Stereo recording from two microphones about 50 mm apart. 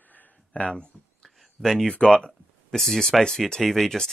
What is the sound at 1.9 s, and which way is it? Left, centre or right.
Speech, left.